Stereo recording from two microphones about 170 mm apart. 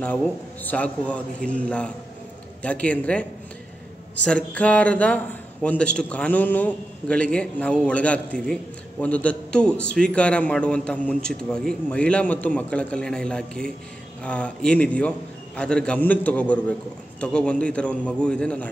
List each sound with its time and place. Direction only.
0.0 s a man's voice: 10° left (ahead or behind)